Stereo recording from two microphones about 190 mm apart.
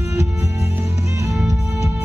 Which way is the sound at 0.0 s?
15° right (ahead or behind).